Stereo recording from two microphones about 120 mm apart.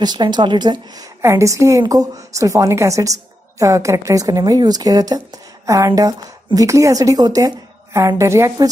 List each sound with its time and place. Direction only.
0.0 s a woman's voice: 35° right (ahead or behind)